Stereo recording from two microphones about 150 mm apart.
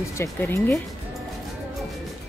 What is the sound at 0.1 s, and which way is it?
Speech, 15° left (ahead or behind).